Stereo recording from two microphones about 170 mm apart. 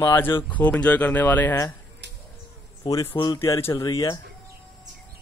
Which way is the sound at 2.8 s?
20° left (ahead or behind).